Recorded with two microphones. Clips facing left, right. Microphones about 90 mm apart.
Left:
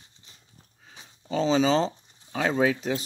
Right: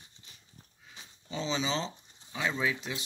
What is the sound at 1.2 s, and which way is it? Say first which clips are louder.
Speech: left 10 dB; 40° left (ahead or behind).